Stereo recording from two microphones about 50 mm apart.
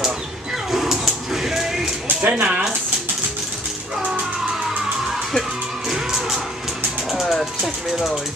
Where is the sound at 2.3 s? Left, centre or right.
Right.